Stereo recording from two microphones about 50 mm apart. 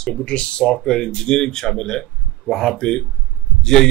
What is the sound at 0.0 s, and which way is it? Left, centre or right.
Speech, centre.